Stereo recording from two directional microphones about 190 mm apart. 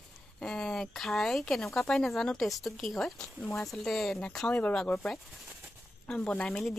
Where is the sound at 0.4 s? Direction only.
5° left (ahead or behind).